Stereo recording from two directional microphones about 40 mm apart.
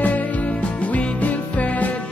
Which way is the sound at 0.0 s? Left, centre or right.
Left.